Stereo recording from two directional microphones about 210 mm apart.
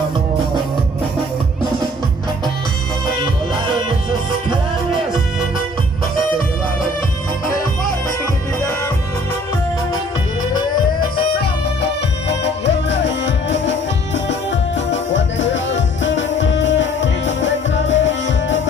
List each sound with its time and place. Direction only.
11.8 s music: 55° left (ahead or behind)